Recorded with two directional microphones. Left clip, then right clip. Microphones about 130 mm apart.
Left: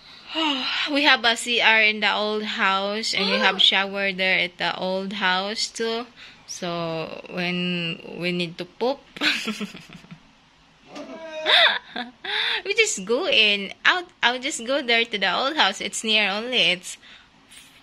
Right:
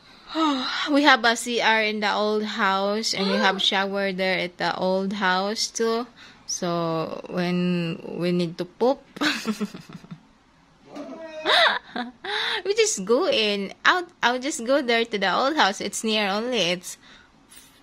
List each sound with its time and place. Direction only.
0.3 s a woman's voice: 50° right (ahead or behind)
11.4 s a woman's voice: 55° right (ahead or behind)